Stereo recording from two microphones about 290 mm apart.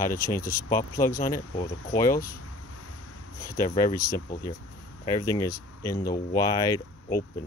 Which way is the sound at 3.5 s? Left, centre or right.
Centre.